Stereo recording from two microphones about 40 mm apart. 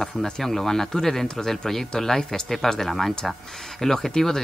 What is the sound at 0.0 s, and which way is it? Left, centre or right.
Speech, centre.